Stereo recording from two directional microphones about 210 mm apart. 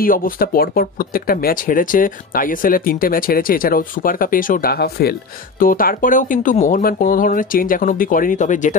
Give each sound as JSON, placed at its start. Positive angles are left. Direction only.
{"t": 0.0, "sound": "speech", "side_deg": 40}